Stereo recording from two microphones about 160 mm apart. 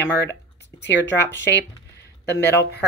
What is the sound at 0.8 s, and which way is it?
Speech, 90° left.